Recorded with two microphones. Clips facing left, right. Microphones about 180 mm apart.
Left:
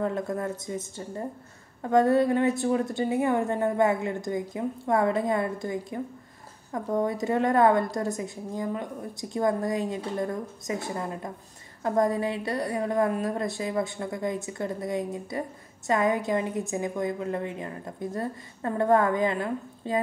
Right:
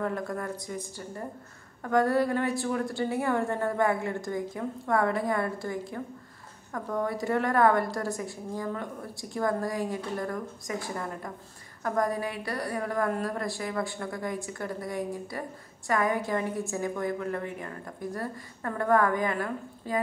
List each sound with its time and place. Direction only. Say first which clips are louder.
0.0 s a woman's voice: left 3 dB; 20° left (ahead or behind)